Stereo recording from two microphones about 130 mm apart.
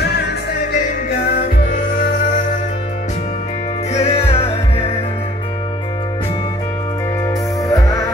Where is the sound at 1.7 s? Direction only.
85° left.